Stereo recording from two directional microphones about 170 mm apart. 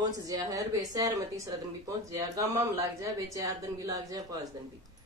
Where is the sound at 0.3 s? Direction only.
20° right (ahead or behind).